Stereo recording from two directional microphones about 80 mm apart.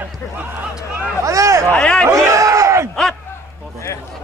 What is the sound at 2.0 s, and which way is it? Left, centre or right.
Battle cry, right.